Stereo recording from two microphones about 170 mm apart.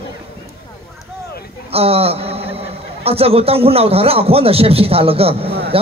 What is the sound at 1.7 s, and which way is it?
A man's voice, 35° right (ahead or behind).